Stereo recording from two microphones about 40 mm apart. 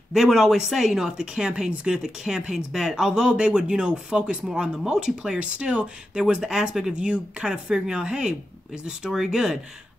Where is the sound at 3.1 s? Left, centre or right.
Right.